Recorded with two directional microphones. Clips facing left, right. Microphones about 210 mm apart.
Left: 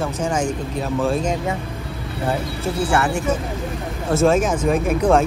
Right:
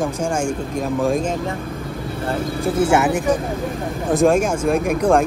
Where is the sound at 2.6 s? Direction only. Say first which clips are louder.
Right 5 dB; 20° right (ahead or behind).